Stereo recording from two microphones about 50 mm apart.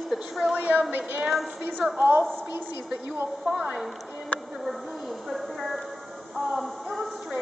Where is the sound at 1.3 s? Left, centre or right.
Centre.